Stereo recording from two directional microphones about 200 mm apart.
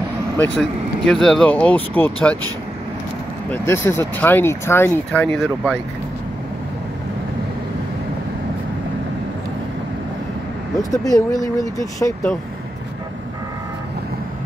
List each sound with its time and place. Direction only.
0.4 s speech: centre (ahead or behind)
3.4 s speech: 10° left (ahead or behind)
10.8 s speech: 15° left (ahead or behind)